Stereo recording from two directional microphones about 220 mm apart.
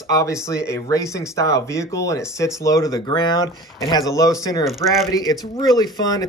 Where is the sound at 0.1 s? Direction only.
15° left (ahead or behind).